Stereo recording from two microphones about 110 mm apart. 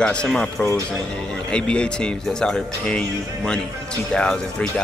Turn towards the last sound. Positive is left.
turn(degrees=10)  # may be behind; listen again after turning